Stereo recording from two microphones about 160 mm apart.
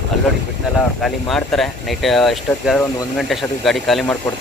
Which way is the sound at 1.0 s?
Centre (ahead or behind).